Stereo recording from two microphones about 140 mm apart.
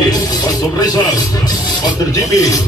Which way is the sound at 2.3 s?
25° left (ahead or behind).